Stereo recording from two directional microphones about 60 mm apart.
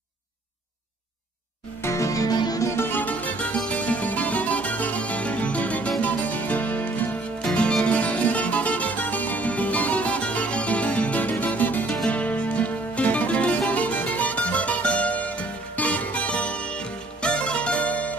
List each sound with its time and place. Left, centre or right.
1.8 s music: left
2.7 s music: left
3.0 s music: left